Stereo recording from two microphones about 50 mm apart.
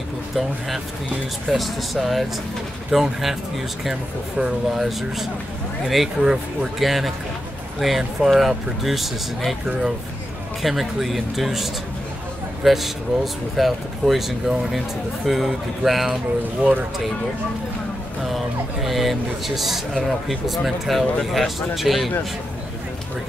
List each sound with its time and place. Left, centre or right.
1.5 s speech: centre
4.4 s speech: centre
10.6 s speech: centre
16.6 s speech: right
18.2 s speech: centre